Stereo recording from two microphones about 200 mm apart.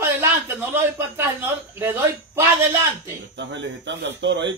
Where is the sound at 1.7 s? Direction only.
10° right (ahead or behind).